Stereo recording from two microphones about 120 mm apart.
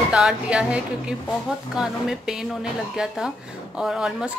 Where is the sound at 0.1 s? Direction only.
5° right (ahead or behind).